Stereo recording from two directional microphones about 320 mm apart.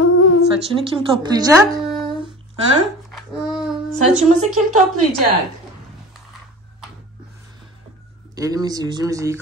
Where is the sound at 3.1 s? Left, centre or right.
Centre.